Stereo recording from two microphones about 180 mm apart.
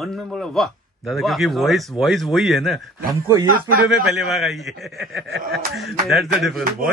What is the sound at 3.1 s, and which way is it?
Speech, 20° right (ahead or behind).